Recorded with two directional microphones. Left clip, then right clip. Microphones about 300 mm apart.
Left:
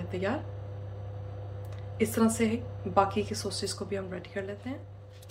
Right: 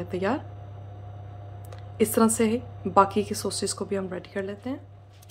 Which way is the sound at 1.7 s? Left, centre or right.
Centre.